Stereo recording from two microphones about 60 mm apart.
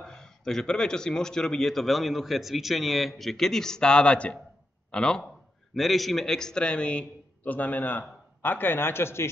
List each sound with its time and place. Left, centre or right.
0.0 s speech: centre
5.8 s a man's voice: centre; by 9.3 s left